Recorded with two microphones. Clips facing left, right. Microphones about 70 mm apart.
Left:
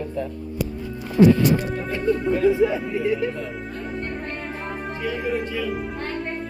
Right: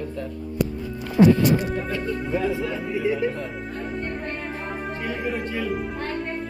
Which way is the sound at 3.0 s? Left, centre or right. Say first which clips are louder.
Even; centre.